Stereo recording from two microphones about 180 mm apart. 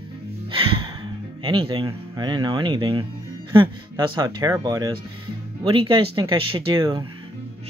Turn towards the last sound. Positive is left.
turn(degrees=-25)  # may be behind; listen again after turning